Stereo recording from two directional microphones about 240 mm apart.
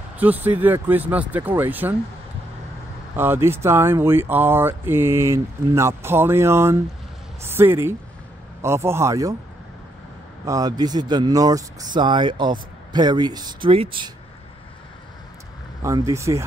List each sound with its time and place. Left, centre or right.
0.2 s speech: centre
3.2 s speech: centre
10.4 s speech: centre
15.8 s speech: centre